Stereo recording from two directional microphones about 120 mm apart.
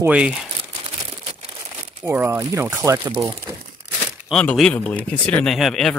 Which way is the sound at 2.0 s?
20° right (ahead or behind).